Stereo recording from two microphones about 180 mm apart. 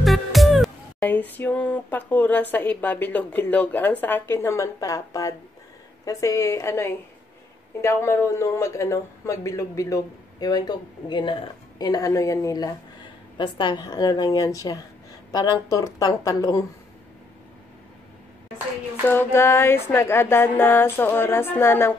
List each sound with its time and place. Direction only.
0.0 s music: centre (ahead or behind); by 11.3 s 25° left (ahead or behind)
11.8 s a woman's voice: 20° left (ahead or behind)
19.0 s music: 15° left (ahead or behind)